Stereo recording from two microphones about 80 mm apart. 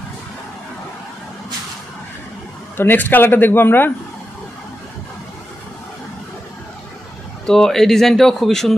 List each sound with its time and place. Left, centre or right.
2.8 s a man's voice: left
7.4 s speech: centre